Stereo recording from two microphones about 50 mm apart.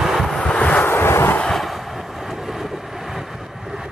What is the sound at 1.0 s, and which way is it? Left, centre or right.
Vehicle, left.